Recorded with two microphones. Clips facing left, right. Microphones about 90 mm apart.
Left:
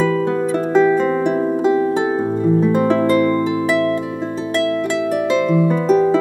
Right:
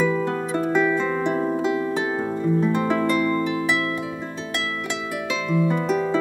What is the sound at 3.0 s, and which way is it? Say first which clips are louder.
Music: left 6 dB; 40° left (ahead or behind).